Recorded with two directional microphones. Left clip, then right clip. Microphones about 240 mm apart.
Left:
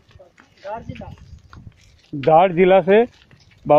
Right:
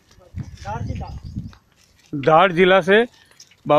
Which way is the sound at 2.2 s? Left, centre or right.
Centre.